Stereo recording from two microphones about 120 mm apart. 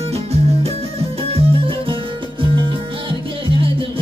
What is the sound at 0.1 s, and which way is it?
Music, 60° right (ahead or behind).